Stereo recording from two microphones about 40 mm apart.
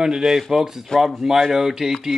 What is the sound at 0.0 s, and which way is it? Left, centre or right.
Speech, centre.